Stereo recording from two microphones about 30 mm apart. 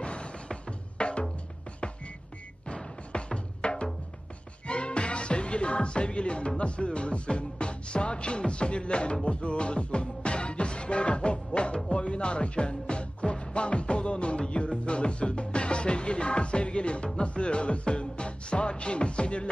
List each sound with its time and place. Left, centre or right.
0.0 s music: left
2.7 s music: left